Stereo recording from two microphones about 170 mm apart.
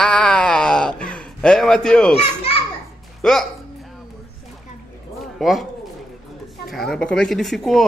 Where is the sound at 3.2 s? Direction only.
5° left (ahead or behind).